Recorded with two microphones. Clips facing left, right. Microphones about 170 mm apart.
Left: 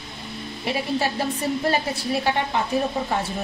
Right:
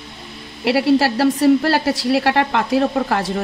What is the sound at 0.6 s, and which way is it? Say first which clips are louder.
A woman's voice: right 10 dB; 90° right.